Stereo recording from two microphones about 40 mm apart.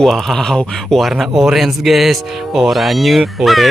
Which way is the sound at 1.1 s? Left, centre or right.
Centre.